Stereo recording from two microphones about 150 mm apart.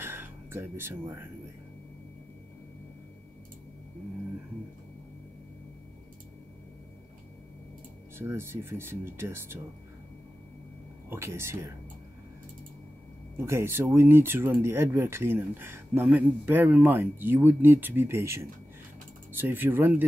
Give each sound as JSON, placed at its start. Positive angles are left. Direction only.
{"t": 0.0, "sound": "a sound", "side_deg": -15}
{"t": 8.2, "sound": "speech", "side_deg": -15}
{"t": 11.1, "sound": "speech", "side_deg": -15}
{"t": 13.4, "sound": "speech", "side_deg": -15}